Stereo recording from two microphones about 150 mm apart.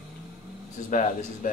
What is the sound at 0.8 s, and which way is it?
Speech, 55° left (ahead or behind).